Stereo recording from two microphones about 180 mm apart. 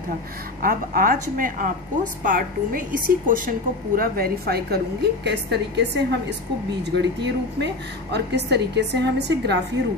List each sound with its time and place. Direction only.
0.6 s a woman's voice: 50° right (ahead or behind); by 9.6 s 70° right (ahead or behind)